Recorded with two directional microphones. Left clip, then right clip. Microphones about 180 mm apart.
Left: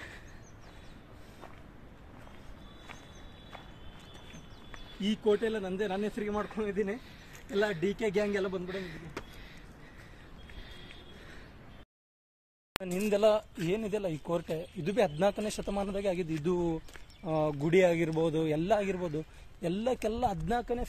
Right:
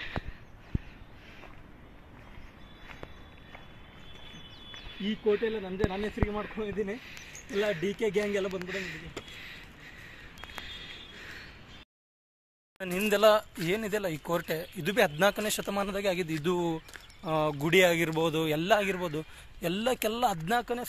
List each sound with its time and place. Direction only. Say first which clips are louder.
5.2 s a man's voice: right 1 dB; 25° left (ahead or behind)
5.5 s a man's voice: right 1 dB; 10° left (ahead or behind)
12.8 s a man's voice: right 3 dB; 5° right (ahead or behind)